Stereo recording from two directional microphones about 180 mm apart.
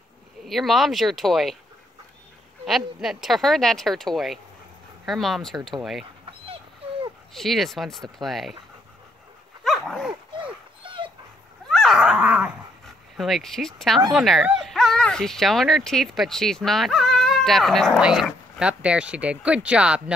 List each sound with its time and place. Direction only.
0.5 s speech: centre (ahead or behind)
2.6 s speech: centre (ahead or behind)
7.3 s speech: centre (ahead or behind)
9.7 s dog: centre (ahead or behind)
10.3 s dog: 30° right (ahead or behind)
11.7 s dog: centre (ahead or behind)
14.1 s speech: centre (ahead or behind)